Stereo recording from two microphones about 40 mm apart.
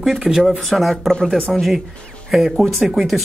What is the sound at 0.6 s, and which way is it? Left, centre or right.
Speech, centre.